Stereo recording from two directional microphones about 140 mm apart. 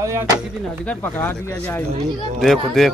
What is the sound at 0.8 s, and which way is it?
Speech, 10° left (ahead or behind).